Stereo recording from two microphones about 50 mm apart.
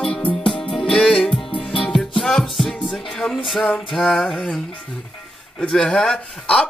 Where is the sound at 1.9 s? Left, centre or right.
Centre.